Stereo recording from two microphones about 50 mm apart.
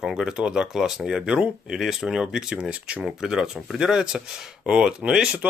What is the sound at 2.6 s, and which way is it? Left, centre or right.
Speech, right.